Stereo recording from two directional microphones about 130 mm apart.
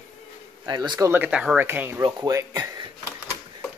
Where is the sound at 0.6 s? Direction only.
35° right (ahead or behind).